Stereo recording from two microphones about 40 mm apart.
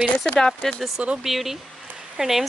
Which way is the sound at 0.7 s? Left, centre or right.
Centre.